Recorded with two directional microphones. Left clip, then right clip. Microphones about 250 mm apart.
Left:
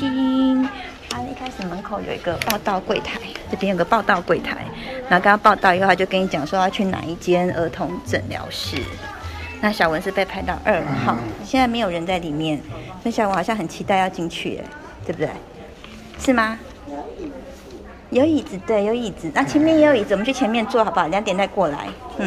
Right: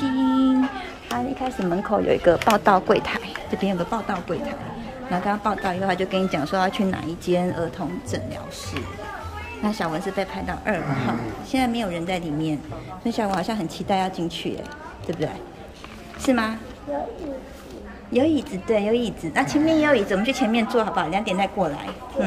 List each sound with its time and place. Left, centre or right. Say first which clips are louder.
0.0 s a sound: left 1 dB; centre
1.9 s speech: right 7 dB; right
2.5 s speech: right 4 dB; centre
3.7 s a woman's voice: left 9 dB; centre
16.3 s a woman's voice: left 4 dB; centre
18.1 s a woman's voice: left 3 dB; centre